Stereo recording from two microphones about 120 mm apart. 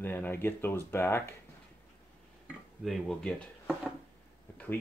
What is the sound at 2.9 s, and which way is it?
Speech, centre (ahead or behind).